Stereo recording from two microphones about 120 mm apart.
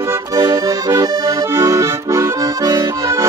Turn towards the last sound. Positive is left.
turn(degrees=-25)  # may be behind; listen again after turning